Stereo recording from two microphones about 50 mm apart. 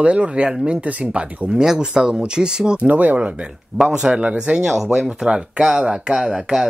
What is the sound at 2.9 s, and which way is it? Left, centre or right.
Speech, right.